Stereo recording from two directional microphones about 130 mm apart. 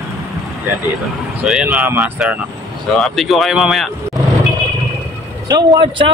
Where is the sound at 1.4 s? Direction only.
5° right (ahead or behind).